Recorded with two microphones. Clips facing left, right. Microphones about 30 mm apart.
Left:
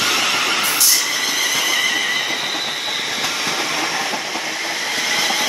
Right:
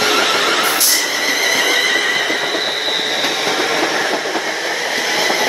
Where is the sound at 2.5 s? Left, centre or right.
Right.